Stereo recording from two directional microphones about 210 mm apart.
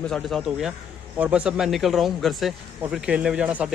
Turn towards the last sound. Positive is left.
turn(degrees=-5)  # may be behind; listen again after turning